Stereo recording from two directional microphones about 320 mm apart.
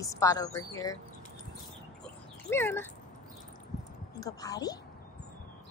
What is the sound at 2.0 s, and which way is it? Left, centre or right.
Dog, centre.